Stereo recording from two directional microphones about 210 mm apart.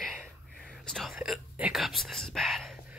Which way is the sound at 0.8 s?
Centre (ahead or behind).